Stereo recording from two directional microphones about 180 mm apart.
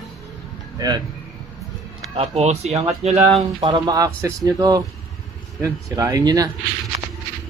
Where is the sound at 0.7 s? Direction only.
20° right (ahead or behind).